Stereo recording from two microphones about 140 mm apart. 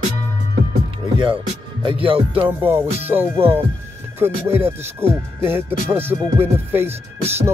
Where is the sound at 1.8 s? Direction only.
40° right (ahead or behind).